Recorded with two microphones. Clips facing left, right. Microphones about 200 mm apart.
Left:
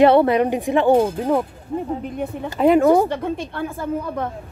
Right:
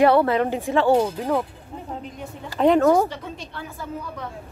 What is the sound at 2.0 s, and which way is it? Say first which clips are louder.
Speech: left 9 dB; 55° left (ahead or behind).